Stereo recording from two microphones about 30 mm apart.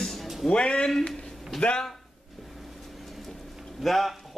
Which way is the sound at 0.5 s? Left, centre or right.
Left.